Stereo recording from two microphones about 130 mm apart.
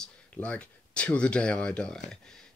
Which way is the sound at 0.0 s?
10° left (ahead or behind).